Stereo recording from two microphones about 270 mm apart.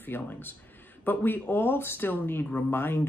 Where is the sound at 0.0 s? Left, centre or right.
Centre.